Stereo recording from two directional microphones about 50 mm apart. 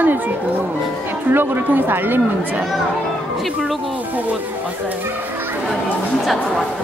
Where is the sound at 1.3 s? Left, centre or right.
Right.